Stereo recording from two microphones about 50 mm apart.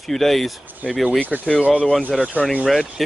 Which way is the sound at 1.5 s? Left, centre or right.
Centre.